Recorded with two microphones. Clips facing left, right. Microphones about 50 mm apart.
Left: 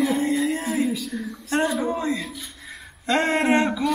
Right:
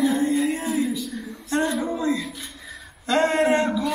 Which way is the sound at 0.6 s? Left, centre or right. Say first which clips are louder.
Even; left.